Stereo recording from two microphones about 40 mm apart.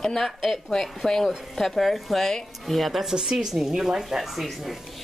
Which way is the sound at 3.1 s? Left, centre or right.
Centre.